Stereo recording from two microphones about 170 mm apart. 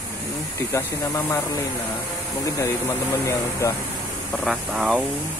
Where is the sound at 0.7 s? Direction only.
15° left (ahead or behind).